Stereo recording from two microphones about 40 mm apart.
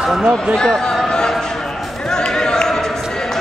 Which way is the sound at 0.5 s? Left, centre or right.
Centre.